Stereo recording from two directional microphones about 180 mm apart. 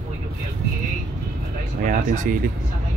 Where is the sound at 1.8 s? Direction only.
40° right (ahead or behind).